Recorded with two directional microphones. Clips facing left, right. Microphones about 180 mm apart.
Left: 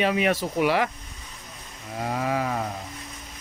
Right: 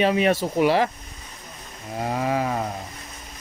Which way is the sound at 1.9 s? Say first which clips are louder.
Right 2 dB; 30° right (ahead or behind).